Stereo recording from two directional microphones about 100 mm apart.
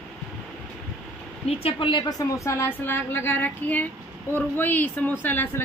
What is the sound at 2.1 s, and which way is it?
A woman's voice, 35° left (ahead or behind).